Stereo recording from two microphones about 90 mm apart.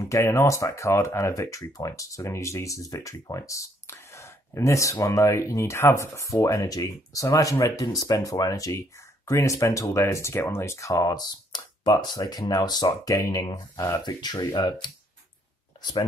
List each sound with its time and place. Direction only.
0.0 s speech: 35° left (ahead or behind); by 12.2 s 50° left (ahead or behind)
12.2 s speech: 40° left (ahead or behind)
14.0 s speech: 50° left (ahead or behind)